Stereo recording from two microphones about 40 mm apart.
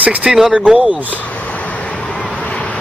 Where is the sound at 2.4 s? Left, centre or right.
Left.